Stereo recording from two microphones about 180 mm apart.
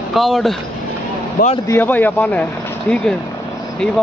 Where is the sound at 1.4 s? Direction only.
55° left (ahead or behind).